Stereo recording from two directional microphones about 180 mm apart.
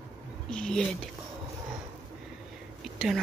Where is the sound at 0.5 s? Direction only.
5° left (ahead or behind).